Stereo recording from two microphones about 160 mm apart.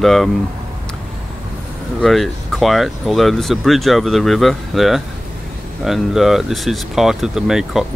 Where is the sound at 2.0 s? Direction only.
Centre (ahead or behind).